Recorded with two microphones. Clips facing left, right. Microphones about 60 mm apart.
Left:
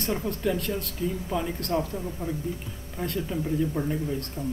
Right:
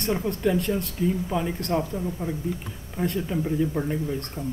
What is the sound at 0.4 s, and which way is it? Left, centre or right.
Speech, centre.